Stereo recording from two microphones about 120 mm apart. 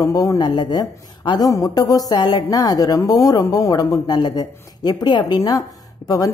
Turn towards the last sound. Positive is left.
turn(degrees=30)  # may be behind; listen again after turning